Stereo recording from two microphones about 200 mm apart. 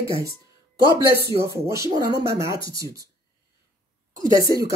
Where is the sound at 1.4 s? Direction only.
15° right (ahead or behind).